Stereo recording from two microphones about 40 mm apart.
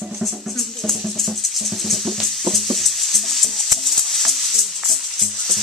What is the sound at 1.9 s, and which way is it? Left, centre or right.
Music, centre.